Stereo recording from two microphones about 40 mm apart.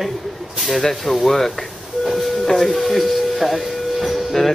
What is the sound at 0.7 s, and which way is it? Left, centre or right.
A man's voice, centre.